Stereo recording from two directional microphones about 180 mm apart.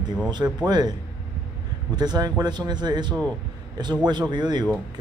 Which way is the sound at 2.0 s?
25° right (ahead or behind).